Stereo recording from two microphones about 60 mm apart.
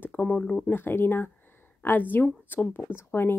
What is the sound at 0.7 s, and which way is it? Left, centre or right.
Speech, left.